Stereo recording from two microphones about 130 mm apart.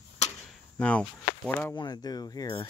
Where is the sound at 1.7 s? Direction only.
30° left (ahead or behind).